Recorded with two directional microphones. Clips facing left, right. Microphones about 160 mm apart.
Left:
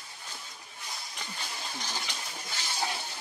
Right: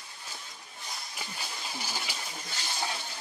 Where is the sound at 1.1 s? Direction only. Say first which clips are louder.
Left 1 dB; 5° right (ahead or behind).